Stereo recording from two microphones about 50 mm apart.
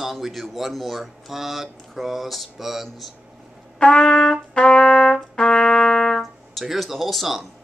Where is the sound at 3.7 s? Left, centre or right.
Centre.